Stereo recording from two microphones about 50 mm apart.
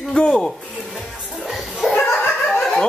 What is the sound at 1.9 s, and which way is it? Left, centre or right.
Laughter, left.